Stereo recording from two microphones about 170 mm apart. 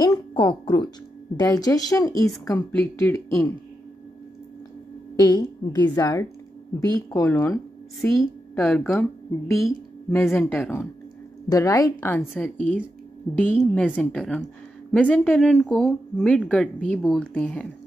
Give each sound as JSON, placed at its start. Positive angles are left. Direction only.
{"t": 0.0, "sound": "music", "side_deg": 20}
{"t": 1.4, "sound": "a woman's voice", "side_deg": 20}
{"t": 5.1, "sound": "a woman's voice", "side_deg": 25}
{"t": 8.2, "sound": "a woman's voice", "side_deg": 5}